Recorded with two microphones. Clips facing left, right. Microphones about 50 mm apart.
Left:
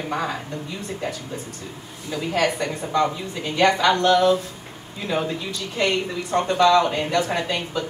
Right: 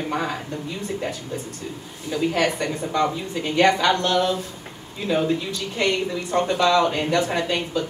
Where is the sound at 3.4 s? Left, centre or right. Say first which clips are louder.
Right 1 dB; right.